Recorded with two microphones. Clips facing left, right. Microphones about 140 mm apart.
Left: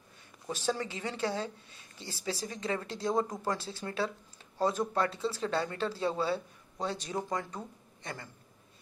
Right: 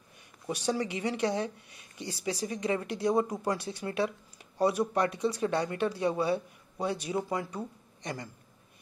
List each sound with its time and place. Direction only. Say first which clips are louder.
0.5 s speech: right 3 dB; 15° right (ahead or behind)